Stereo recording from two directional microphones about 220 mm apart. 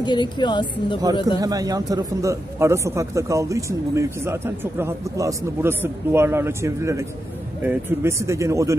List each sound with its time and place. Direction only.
0.0 s speech: 20° left (ahead or behind)
1.4 s speech: 15° right (ahead or behind)